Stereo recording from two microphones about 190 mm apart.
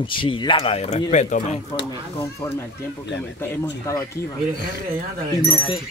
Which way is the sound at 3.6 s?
20° left (ahead or behind).